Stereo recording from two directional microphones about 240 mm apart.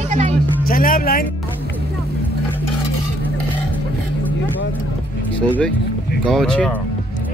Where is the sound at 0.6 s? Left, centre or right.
Left.